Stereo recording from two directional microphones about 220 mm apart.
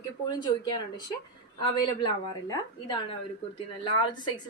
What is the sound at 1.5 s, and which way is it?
A woman's voice, 20° left (ahead or behind).